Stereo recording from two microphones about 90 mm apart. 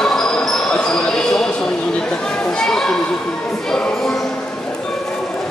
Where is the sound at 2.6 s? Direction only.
5° left (ahead or behind).